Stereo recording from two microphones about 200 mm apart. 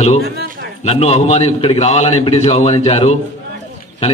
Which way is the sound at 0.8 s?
30° left (ahead or behind).